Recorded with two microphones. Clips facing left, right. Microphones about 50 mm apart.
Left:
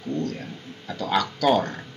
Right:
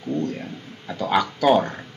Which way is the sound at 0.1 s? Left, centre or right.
Centre.